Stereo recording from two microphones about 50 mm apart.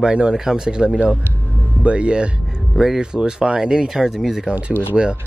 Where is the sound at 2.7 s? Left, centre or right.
Centre.